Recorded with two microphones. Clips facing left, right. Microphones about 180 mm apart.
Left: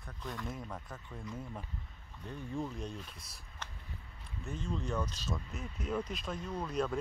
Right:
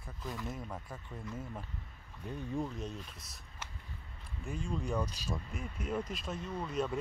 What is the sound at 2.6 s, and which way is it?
Speech, centre (ahead or behind).